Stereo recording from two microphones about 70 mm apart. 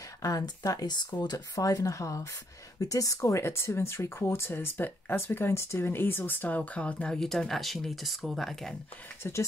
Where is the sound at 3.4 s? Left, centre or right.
Left; by 8.8 s centre.